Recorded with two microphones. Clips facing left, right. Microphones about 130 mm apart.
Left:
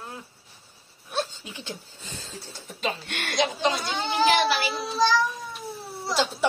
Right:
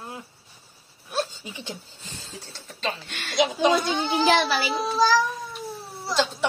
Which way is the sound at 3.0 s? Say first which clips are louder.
Left 4 dB; 65° left (ahead or behind).